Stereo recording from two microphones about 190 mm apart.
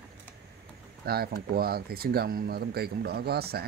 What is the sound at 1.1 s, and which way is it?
Speech, 55° right (ahead or behind).